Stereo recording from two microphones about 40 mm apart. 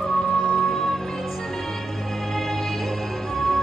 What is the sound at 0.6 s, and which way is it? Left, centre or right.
Music, centre.